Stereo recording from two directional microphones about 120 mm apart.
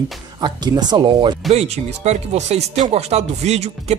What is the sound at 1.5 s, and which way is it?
Speech, 65° right (ahead or behind).